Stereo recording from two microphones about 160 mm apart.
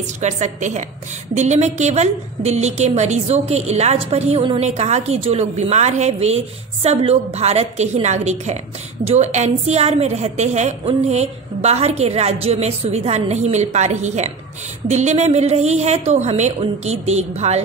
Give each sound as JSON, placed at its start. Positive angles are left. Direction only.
{"t": 0.2, "sound": "a woman's voice", "side_deg": -50}